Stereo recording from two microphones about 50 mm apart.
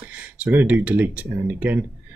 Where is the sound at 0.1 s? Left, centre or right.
Right.